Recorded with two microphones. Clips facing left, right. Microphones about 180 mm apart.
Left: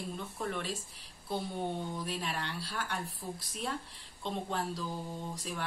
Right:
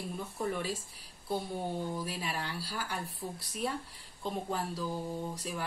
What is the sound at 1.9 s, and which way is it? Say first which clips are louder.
Speech: even; 5° right (ahead or behind).